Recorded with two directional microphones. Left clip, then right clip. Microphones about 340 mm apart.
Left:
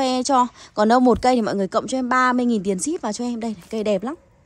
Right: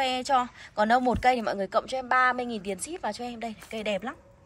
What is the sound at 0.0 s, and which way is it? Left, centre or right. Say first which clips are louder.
A woman's voice: left 7 dB; centre.